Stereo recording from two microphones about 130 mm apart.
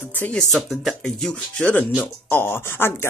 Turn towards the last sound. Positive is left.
turn(degrees=20)  # may be behind; listen again after turning